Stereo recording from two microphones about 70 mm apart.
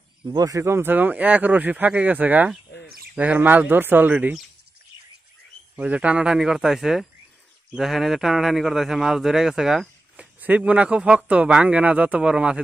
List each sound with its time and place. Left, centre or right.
0.2 s speech: right
0.6 s speech: right
5.8 s a man's voice: centre
10.1 s speech: centre